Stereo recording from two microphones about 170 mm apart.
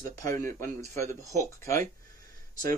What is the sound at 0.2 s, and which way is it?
Speech, 15° left (ahead or behind).